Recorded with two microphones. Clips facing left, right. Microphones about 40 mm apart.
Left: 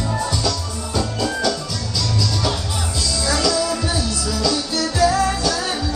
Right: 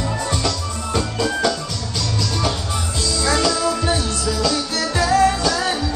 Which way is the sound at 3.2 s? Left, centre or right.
Right.